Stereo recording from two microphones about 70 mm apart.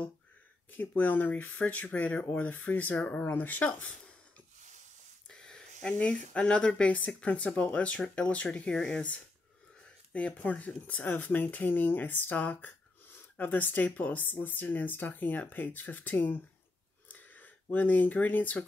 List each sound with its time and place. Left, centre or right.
0.7 s speech: left
5.3 s speech: centre; by 16.3 s left
17.1 s a sound: left